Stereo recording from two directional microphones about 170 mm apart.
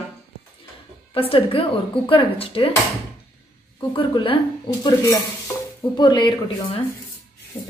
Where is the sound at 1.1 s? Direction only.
35° left (ahead or behind).